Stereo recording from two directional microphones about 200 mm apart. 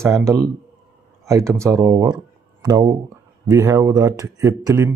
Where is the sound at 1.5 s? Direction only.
15° right (ahead or behind).